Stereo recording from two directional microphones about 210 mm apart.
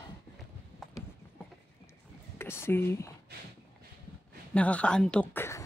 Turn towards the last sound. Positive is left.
turn(degrees=10)  # may be behind; listen again after turning